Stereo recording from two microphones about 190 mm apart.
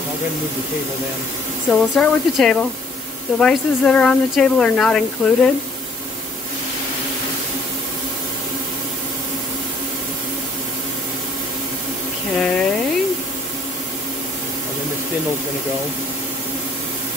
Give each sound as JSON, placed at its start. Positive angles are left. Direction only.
{"t": 1.7, "sound": "speech", "side_deg": 5}
{"t": 12.4, "sound": "speech", "side_deg": 5}